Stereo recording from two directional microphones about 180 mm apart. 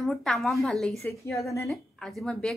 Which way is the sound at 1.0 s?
15° left (ahead or behind).